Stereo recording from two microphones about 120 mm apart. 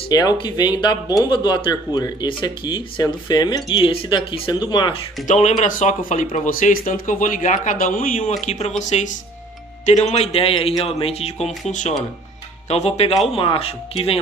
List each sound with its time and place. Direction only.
0.1 s a man's voice: 35° left (ahead or behind)
5.2 s speech: 75° left (ahead or behind)
5.6 s speech: 90° left
8.5 s speech: 70° left (ahead or behind)
9.8 s a man's voice: 65° left (ahead or behind)
12.6 s a man's voice: 60° left (ahead or behind)
13.3 s speech: 50° left (ahead or behind)